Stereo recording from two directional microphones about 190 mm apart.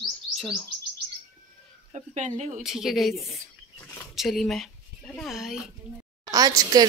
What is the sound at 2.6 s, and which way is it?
Speech, centre (ahead or behind).